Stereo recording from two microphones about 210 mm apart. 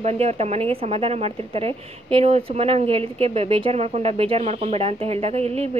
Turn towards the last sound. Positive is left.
turn(degrees=-30)  # may be behind; listen again after turning